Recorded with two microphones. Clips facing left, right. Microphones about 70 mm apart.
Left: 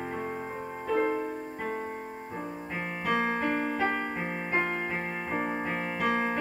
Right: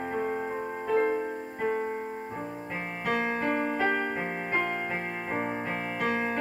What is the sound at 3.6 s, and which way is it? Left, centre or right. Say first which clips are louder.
Music: right 2 dB; right.